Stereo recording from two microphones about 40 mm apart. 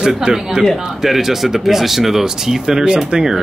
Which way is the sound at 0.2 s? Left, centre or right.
Right.